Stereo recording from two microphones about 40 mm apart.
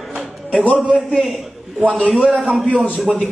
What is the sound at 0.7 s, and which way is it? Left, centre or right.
Speech, right.